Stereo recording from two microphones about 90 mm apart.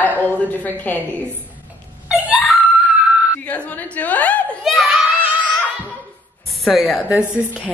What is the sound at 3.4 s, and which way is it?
A woman's voice, 15° left (ahead or behind).